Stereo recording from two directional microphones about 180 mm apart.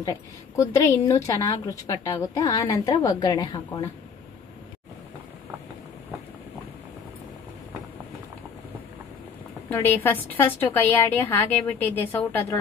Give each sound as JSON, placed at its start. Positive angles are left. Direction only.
{"t": 0.0, "sound": "a woman's voice", "side_deg": 20}
{"t": 9.7, "sound": "a woman's voice", "side_deg": 10}